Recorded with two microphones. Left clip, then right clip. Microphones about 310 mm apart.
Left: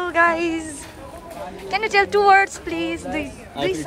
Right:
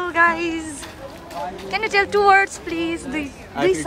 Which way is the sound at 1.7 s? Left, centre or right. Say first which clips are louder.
Left 1 dB; centre.